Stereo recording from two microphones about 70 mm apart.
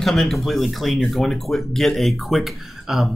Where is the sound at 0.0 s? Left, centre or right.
Centre.